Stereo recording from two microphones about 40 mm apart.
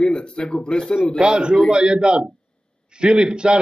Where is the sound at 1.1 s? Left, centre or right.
Right.